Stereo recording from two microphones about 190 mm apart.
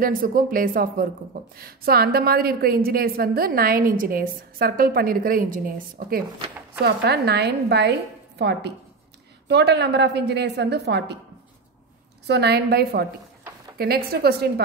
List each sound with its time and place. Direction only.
0.0 s a woman's voice: 50° right (ahead or behind)
12.3 s a woman's voice: 60° right (ahead or behind)